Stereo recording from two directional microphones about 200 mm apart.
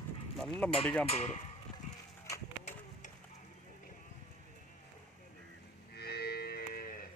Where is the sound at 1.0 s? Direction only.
35° left (ahead or behind).